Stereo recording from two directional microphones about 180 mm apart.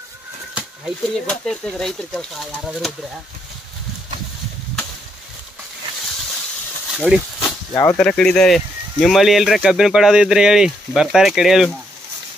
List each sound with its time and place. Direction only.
0.6 s speech: centre (ahead or behind)
7.0 s speech: 5° right (ahead or behind)
7.4 s snake: 15° left (ahead or behind)
8.0 s speech: 5° left (ahead or behind)